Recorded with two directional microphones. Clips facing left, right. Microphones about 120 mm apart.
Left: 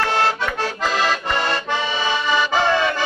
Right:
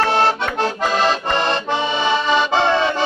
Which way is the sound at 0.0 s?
25° right (ahead or behind).